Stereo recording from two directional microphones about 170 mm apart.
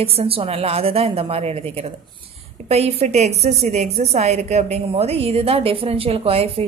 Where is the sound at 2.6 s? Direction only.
40° right (ahead or behind).